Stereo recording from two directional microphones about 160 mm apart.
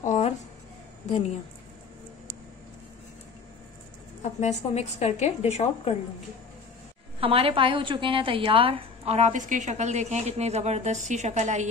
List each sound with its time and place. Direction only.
0.0 s a sound: 50° left (ahead or behind)
4.2 s a woman's voice: 45° left (ahead or behind)
7.2 s a woman's voice: 35° right (ahead or behind)